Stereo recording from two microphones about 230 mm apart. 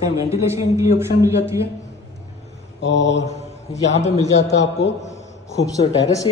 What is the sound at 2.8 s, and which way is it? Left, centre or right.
Mantra, left.